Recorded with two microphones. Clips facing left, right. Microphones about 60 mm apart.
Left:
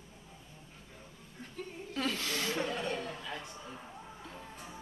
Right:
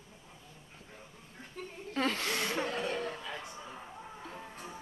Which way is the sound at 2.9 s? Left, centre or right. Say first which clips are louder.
Right 2 dB; right.